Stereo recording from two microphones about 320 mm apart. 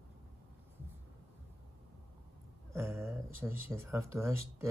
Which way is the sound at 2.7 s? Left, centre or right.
Centre.